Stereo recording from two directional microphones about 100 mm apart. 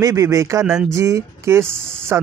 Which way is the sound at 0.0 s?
35° right (ahead or behind).